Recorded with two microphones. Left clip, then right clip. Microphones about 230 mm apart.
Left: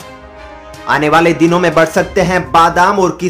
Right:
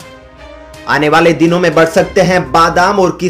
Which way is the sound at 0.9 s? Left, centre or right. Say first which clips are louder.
Right 1 dB; centre.